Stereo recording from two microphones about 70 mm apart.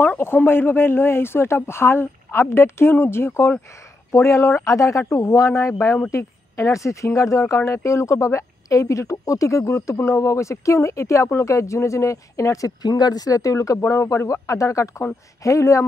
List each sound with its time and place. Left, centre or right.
0.0 s speech: left